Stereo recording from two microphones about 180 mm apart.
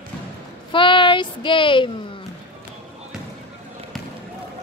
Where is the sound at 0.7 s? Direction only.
25° left (ahead or behind).